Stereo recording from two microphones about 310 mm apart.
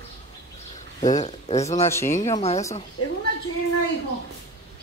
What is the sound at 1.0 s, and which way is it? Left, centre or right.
Speech, left.